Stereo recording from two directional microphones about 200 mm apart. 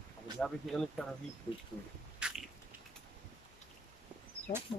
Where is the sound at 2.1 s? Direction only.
5° right (ahead or behind).